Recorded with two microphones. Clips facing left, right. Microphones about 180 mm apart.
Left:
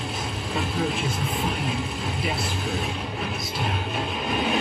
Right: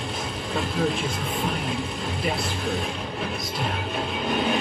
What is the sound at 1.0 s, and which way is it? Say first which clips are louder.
Speech: even; centre (ahead or behind).